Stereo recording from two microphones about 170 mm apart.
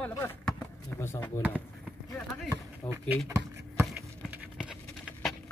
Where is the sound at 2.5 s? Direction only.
15° right (ahead or behind).